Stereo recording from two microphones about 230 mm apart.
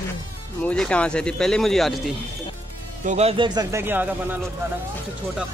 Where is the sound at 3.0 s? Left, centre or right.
Right; by 4.1 s centre.